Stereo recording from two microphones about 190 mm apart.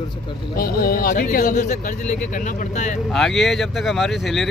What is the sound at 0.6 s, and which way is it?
Speech, 50° left (ahead or behind).